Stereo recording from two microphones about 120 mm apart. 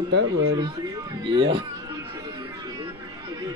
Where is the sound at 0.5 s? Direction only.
35° right (ahead or behind).